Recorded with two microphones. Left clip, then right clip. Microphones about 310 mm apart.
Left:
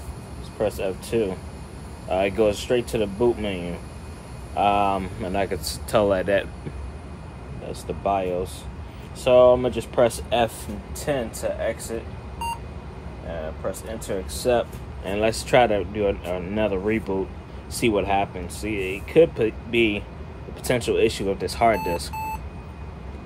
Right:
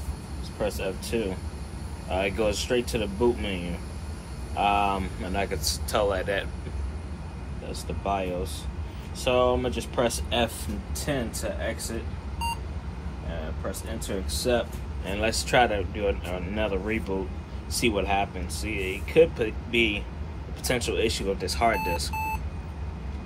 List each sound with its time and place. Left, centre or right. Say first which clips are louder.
0.6 s speech: left 5 dB; left
7.7 s speech: left 5 dB; left
13.6 s speech: left 4 dB; left